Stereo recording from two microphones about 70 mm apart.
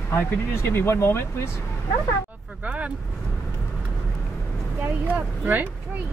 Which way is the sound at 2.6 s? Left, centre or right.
Centre.